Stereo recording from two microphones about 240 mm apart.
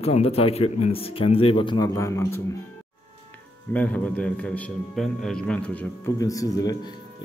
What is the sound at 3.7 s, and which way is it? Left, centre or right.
A man's voice, centre.